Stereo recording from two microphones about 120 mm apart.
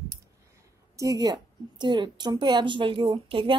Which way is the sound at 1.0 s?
30° right (ahead or behind).